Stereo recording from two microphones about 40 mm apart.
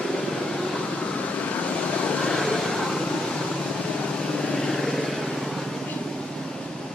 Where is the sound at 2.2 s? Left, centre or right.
Centre.